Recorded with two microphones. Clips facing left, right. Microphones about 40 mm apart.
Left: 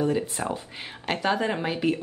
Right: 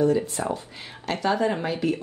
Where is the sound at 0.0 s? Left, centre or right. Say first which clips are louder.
Right 3 dB; left.